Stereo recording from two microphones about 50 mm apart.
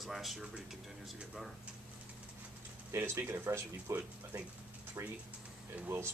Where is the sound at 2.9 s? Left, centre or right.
Right.